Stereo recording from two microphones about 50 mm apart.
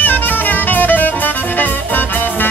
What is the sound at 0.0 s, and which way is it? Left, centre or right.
Music, left.